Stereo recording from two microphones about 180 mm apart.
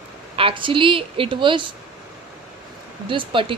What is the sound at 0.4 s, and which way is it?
A woman's voice, 30° right (ahead or behind).